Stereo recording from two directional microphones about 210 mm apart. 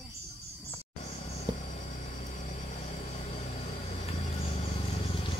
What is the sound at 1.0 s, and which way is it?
Vehicle, 30° left (ahead or behind).